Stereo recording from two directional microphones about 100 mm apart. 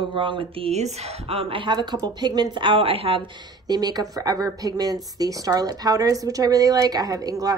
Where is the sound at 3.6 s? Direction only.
40° right (ahead or behind).